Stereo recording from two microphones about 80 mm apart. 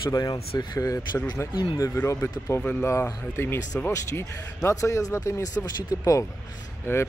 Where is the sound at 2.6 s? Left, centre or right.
Left.